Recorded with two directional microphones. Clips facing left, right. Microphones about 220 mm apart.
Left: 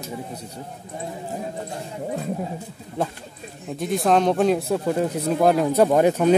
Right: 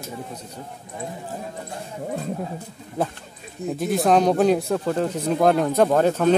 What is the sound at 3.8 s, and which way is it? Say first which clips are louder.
Speech: right 1 dB; centre (ahead or behind).